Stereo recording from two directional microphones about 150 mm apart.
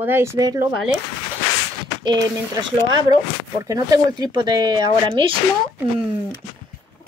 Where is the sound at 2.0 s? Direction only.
25° right (ahead or behind).